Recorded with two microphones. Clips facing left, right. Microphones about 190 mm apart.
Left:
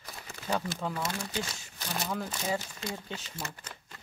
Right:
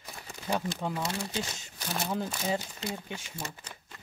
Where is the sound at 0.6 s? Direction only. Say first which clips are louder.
Right 1 dB; 20° right (ahead or behind).